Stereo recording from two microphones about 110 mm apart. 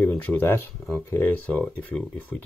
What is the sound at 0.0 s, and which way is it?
Speech, 15° left (ahead or behind).